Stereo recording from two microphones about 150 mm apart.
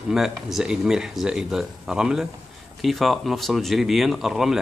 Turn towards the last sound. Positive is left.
turn(degrees=0)  # may be behind; listen again after turning